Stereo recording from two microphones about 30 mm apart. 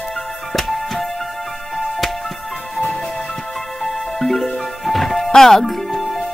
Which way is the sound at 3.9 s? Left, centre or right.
Centre.